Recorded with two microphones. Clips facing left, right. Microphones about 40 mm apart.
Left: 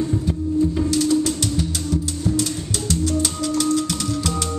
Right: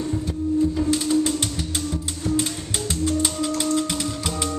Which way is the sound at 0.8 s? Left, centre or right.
Right.